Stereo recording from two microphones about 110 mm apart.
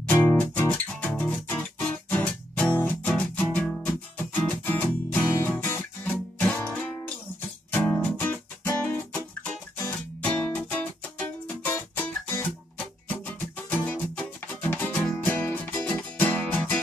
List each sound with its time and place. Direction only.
0.3 s music: 20° left (ahead or behind)
5.5 s guitar: 15° left (ahead or behind)
7.7 s music: 15° left (ahead or behind)